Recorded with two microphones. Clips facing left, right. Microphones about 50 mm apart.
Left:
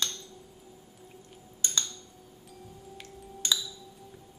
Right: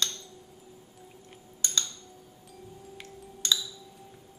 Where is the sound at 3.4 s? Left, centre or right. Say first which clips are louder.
Right 1 dB; centre.